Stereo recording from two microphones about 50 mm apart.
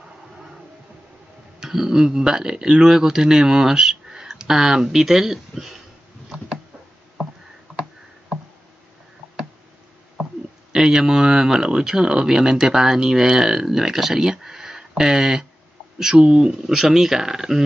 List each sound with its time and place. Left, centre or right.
1.6 s speech: centre
10.7 s speech: centre